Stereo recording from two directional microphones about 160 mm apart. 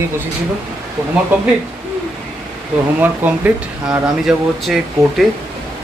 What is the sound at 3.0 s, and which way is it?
Speech, 10° right (ahead or behind).